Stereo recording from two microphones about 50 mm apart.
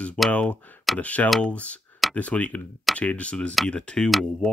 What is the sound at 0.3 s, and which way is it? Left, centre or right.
Speech, left.